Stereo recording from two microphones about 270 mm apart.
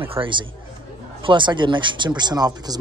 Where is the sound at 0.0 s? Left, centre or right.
Centre.